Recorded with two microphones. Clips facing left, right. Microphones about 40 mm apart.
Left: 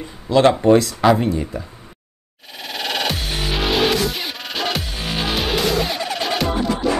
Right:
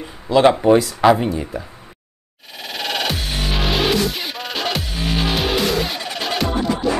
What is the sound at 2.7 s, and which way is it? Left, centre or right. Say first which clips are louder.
Music: even; centre.